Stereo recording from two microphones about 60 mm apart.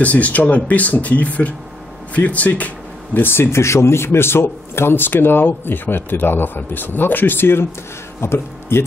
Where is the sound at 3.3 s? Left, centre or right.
Left.